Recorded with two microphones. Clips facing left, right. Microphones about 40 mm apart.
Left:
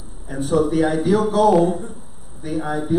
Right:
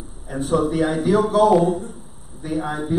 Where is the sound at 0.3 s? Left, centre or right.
Centre.